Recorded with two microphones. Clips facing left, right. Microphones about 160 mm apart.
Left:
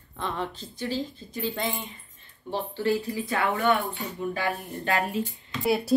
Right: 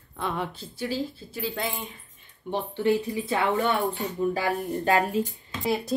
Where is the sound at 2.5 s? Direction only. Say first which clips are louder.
Right 2 dB; 20° right (ahead or behind).